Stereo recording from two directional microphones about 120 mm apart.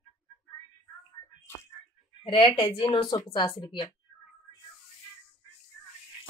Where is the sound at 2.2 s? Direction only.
45° left (ahead or behind).